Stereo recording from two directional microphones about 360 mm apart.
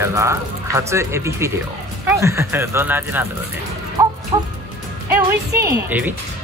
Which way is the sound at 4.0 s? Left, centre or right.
Centre.